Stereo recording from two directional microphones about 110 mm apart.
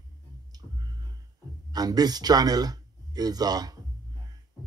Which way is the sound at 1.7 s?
35° right (ahead or behind).